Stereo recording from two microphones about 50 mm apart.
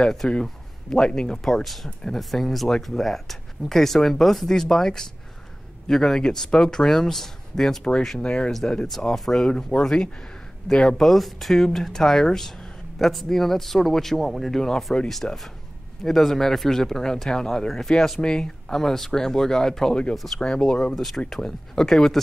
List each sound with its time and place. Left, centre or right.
0.3 s speech: centre
8.2 s speech: centre
9.5 s speech: centre
11.1 s speech: centre
15.2 s speech: centre
16.0 s speech: centre
20.9 s speech: centre